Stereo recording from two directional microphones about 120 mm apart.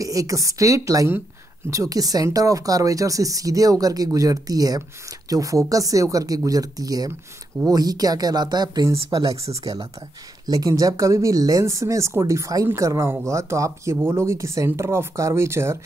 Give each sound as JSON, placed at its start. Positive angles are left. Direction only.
{"t": 0.0, "sound": "speech", "side_deg": -30}